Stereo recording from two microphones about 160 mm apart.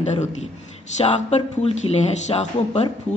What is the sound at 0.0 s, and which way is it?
Speech, 45° left (ahead or behind).